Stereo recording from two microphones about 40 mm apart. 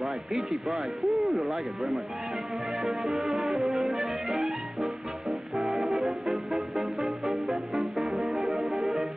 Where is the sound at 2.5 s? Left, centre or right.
Centre.